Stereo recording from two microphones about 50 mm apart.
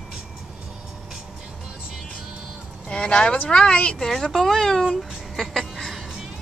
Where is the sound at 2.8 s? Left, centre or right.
Left; by 4.8 s centre.